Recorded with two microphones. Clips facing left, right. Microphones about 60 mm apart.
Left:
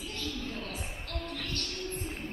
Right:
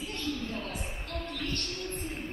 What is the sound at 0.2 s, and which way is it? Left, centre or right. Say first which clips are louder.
Music: right 3 dB; right.